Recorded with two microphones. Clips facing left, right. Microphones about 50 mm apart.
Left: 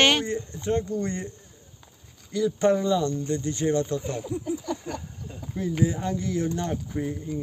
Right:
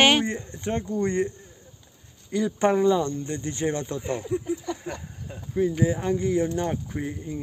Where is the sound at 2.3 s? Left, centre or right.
Right.